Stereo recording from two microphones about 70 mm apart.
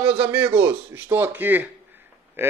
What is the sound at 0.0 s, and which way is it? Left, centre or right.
A man's voice, right.